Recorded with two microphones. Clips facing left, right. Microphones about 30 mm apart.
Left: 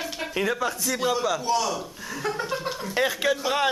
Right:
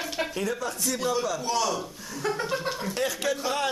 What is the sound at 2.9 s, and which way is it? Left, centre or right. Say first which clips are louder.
Speech: left 7 dB; left.